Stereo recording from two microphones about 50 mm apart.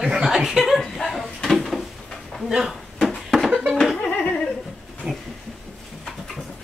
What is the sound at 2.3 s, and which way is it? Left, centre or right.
Speech, centre.